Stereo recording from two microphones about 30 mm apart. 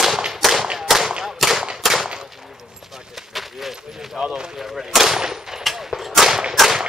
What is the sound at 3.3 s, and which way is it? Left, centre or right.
Speech, centre.